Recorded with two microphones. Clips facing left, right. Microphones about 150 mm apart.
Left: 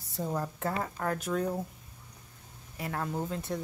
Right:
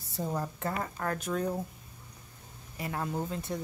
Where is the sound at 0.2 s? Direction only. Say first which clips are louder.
Left 1 dB; centre (ahead or behind).